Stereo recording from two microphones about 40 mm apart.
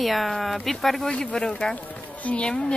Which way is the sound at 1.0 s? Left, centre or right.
Centre.